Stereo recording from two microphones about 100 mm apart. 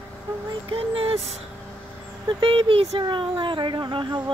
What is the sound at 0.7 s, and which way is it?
Speech, 75° right (ahead or behind).